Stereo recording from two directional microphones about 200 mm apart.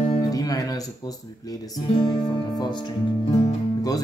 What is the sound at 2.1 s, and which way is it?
Music, 20° left (ahead or behind).